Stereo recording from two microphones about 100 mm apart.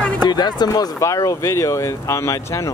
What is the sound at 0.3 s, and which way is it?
Speech, 45° left (ahead or behind).